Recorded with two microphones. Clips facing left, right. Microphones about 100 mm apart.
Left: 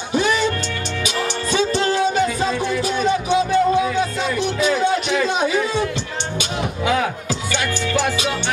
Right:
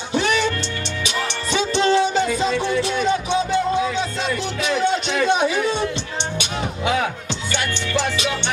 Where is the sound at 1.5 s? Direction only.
25° right (ahead or behind).